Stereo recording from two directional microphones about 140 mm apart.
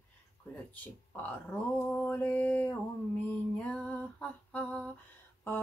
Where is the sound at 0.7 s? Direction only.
10° left (ahead or behind).